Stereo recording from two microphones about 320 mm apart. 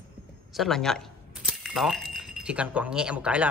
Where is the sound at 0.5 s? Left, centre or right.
Centre.